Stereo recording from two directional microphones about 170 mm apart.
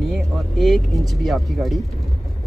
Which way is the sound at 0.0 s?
Centre (ahead or behind).